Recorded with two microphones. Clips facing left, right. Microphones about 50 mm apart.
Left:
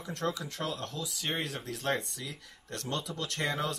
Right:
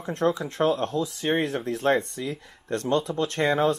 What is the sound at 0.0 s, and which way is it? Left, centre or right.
Speech, right.